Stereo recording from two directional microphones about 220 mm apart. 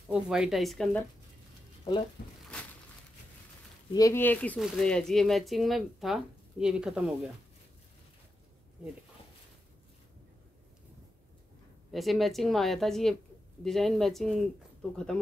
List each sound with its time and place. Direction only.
0.1 s speech: 5° right (ahead or behind)
1.9 s speech: 20° left (ahead or behind)
3.9 s speech: 15° left (ahead or behind); by 7.1 s 5° right (ahead or behind)
11.9 s speech: centre (ahead or behind)